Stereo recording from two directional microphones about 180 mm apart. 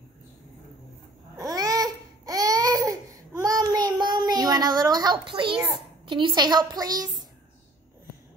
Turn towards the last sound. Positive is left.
turn(degrees=-20)  # may be behind; listen again after turning